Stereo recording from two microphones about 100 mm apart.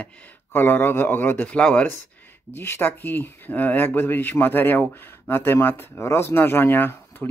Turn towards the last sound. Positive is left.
turn(degrees=20)  # may be behind; listen again after turning